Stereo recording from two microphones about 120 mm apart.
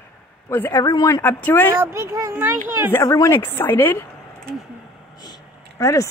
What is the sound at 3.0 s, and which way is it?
Speech, 30° left (ahead or behind).